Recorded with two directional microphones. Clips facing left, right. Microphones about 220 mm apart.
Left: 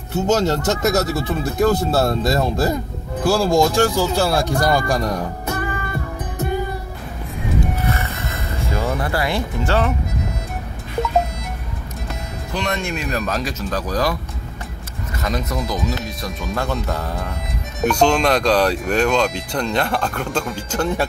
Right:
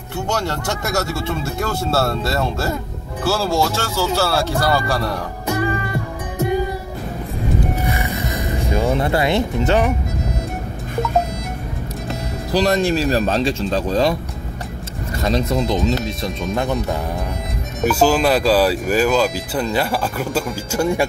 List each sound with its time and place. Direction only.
0.1 s speech: 20° left (ahead or behind)
7.8 s music: 15° right (ahead or behind)
12.4 s speech: 35° right (ahead or behind)
15.2 s speech: 30° right (ahead or behind)
16.5 s speech: 15° right (ahead or behind)
17.8 s speech: 5° right (ahead or behind)